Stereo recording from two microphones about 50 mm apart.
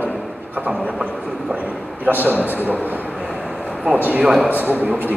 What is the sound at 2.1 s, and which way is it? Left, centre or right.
Speech, right.